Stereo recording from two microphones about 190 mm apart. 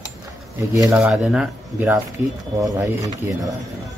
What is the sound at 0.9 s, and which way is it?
Speech, 5° right (ahead or behind).